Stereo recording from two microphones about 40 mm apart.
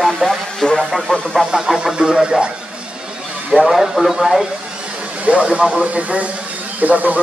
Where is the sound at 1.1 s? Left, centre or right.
Left.